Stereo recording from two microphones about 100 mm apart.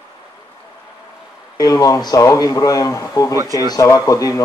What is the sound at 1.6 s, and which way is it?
Speech, 40° left (ahead or behind).